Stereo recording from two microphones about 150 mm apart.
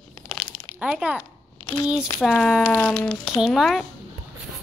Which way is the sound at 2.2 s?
Centre (ahead or behind).